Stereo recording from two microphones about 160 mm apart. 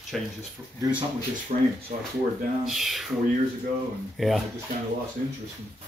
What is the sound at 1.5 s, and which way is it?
Speech, 50° right (ahead or behind).